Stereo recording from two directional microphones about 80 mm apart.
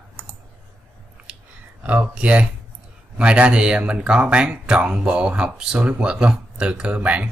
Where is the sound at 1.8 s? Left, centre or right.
Centre.